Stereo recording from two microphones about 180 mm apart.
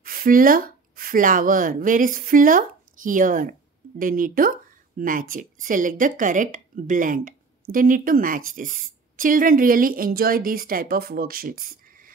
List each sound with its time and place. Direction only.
0.0 s speech: 50° right (ahead or behind)